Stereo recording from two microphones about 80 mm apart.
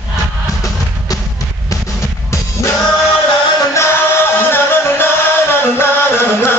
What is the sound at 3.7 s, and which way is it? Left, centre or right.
Music, left.